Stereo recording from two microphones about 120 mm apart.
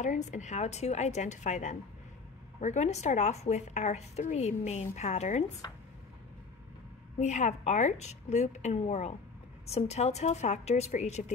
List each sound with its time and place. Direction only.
0.0 s speech: 90° left
2.6 s a woman's voice: 70° left (ahead or behind)
5.6 s speech: 35° left (ahead or behind)
7.2 s a woman's voice: 80° left